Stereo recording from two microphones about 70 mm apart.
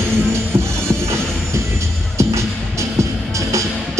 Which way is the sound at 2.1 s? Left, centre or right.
Right.